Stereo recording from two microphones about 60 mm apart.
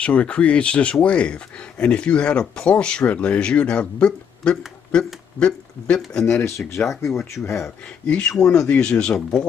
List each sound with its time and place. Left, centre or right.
0.0 s speech: left
6.2 s speech: left
7.1 s speech: centre
8.1 s speech: centre